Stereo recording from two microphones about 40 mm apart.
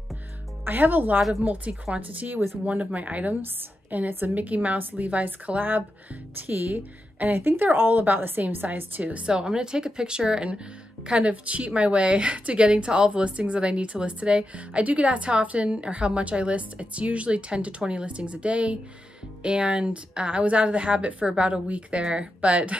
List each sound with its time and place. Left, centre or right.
0.7 s a woman's voice: right
4.1 s a woman's voice: right
4.4 s a woman's voice: right
9.2 s a woman's voice: right